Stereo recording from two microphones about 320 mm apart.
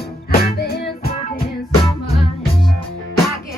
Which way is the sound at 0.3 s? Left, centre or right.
Left.